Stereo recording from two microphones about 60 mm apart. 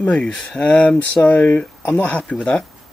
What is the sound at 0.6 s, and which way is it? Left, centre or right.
Speech, left.